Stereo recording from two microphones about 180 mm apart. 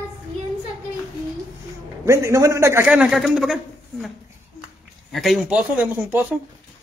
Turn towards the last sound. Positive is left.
turn(degrees=-5)  # may be behind; listen again after turning